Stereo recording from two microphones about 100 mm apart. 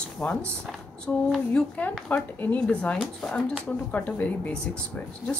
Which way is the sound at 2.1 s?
15° left (ahead or behind).